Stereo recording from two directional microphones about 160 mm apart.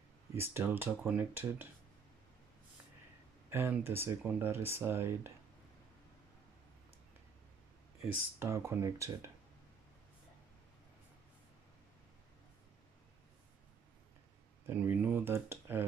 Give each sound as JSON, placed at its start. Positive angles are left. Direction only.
{"t": 0.4, "sound": "speech", "side_deg": -15}
{"t": 3.4, "sound": "speech", "side_deg": -15}
{"t": 8.4, "sound": "speech", "side_deg": -15}
{"t": 14.7, "sound": "speech", "side_deg": -10}